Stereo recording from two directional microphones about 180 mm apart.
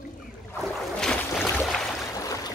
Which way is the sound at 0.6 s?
5° left (ahead or behind).